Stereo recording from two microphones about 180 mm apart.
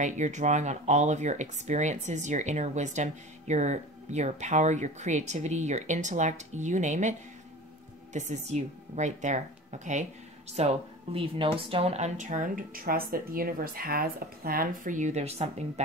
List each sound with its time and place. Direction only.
0.0 s speech: 40° right (ahead or behind)